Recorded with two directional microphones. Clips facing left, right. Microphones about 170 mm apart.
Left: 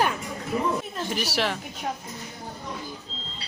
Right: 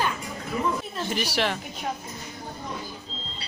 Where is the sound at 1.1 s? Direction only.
5° left (ahead or behind).